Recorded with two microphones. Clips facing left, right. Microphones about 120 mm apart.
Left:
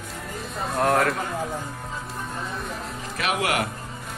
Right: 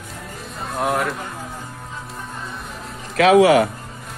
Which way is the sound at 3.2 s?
90° right.